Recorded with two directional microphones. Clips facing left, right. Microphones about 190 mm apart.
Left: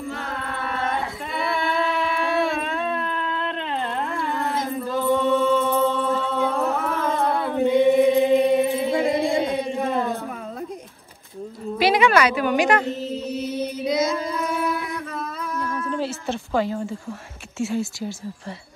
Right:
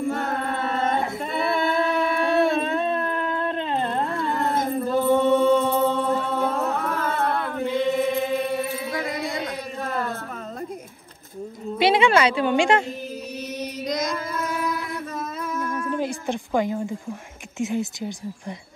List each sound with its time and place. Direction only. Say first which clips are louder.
0.1 s singing: right 5 dB; 50° right (ahead or behind)
2.6 s a sound: right 2 dB; 25° right (ahead or behind)
4.4 s singing: right 3 dB; 55° right (ahead or behind)
5.0 s music: right 1 dB; 15° right (ahead or behind)
6.5 s a sound: left 2 dB; centre (ahead or behind)
7.5 s chant: left 9 dB; 15° left (ahead or behind)
11.8 s a woman's voice: even; 25° right (ahead or behind)
13.8 s child singing: left 5 dB; 5° left (ahead or behind)
15.6 s music: even; 15° right (ahead or behind)
17.6 s speech: left 1 dB; 20° right (ahead or behind)